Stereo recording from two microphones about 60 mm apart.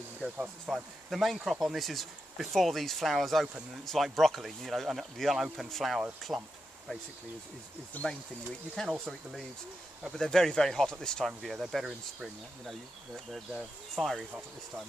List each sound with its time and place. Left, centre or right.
0.7 s speech: centre
6.3 s speech: right
8.0 s speech: left
8.7 s speech: centre
11.2 s speech: centre
13.9 s speech: centre